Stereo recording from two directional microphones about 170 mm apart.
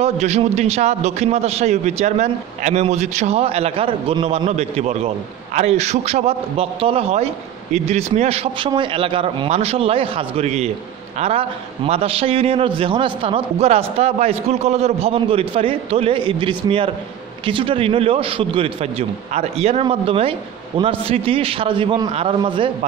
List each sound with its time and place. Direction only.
0.0 s a man's voice: 40° right (ahead or behind)